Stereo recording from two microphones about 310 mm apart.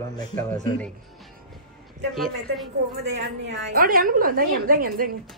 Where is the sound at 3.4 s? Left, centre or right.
Right.